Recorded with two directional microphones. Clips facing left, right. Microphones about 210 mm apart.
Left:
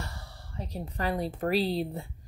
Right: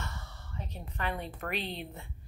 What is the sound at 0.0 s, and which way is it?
Speech, 35° left (ahead or behind).